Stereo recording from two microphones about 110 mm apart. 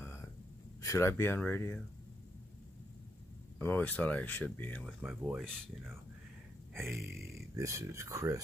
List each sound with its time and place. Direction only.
0.0 s a sound: 25° left (ahead or behind)
0.8 s speech: 25° left (ahead or behind)
3.5 s speech: 15° left (ahead or behind)
4.8 s speech: 10° right (ahead or behind)
6.7 s speech: 20° right (ahead or behind)